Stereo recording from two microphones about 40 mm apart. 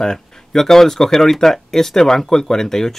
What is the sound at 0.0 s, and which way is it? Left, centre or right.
Speech, centre.